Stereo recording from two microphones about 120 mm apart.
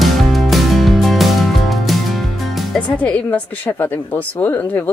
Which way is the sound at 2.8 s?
10° left (ahead or behind).